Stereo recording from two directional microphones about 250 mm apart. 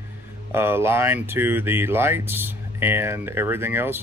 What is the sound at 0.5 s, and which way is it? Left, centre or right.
Speech, centre.